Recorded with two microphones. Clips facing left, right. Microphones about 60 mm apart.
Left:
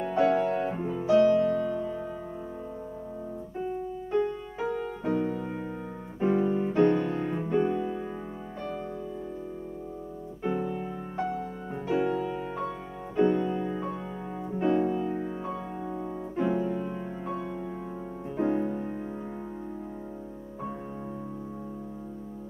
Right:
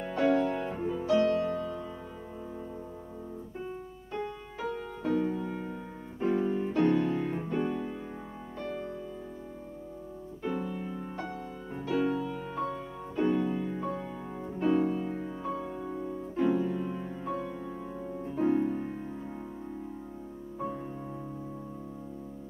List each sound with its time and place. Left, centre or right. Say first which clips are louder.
0.1 s music: left 2 dB; centre
1.2 s music: left 5 dB; centre
4.1 s music: left 9 dB; left
6.1 s music: left 3 dB; centre; by 7.4 s left
7.4 s music: left 5 dB; centre
10.4 s music: left 4 dB; centre
11.7 s music: left 2 dB; centre
12.2 s music: left 2 dB; left
13.3 s music: left 2 dB; centre
13.6 s music: left 2 dB; left
14.5 s music: left 1 dB; centre